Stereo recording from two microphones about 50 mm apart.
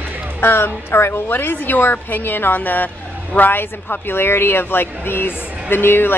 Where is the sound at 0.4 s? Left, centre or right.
Left.